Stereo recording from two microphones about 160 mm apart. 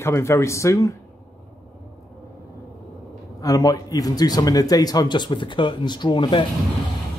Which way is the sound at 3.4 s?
25° left (ahead or behind).